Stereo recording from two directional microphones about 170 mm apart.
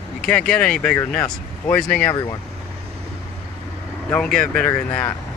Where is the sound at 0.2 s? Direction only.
5° left (ahead or behind).